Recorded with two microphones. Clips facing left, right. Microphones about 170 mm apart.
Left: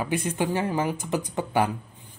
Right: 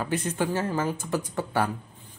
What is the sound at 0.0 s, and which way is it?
Speech, 10° left (ahead or behind).